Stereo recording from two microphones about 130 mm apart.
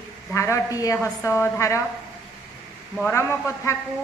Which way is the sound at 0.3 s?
20° left (ahead or behind).